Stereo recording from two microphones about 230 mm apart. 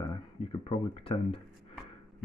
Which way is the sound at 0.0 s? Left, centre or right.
Left.